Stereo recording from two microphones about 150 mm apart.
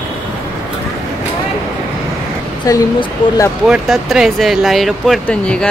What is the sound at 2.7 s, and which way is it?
Speech, 25° left (ahead or behind).